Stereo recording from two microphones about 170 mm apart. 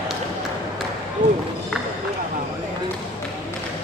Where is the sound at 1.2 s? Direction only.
50° right (ahead or behind).